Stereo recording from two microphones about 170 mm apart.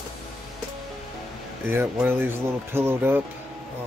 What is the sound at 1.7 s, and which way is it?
Speech, 10° right (ahead or behind).